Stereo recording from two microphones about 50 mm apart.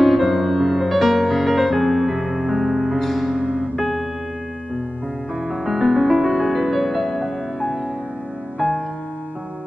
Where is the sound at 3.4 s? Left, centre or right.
Centre.